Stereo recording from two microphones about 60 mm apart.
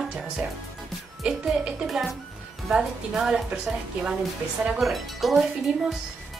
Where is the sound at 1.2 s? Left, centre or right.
Centre.